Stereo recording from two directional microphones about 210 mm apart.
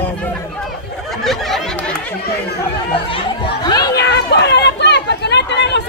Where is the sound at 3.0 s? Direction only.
20° left (ahead or behind).